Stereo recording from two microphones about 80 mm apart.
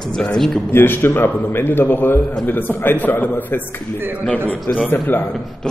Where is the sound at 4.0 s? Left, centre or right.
Right.